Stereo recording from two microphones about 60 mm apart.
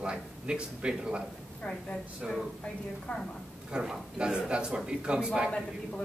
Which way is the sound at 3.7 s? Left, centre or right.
Centre.